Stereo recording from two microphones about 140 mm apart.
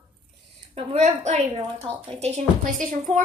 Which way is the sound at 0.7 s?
50° right (ahead or behind).